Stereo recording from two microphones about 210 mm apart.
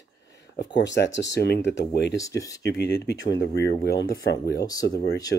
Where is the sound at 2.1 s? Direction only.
15° left (ahead or behind).